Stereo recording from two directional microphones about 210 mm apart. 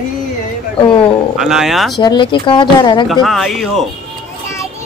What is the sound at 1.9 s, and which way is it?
Speech, 20° left (ahead or behind).